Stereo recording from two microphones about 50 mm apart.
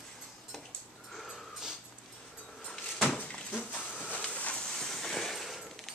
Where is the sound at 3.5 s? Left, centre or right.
Left.